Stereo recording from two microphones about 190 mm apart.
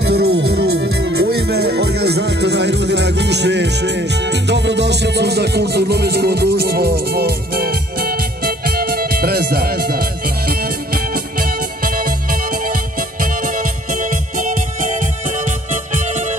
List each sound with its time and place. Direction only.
0.0 s music: 55° right (ahead or behind); by 16.3 s 40° right (ahead or behind)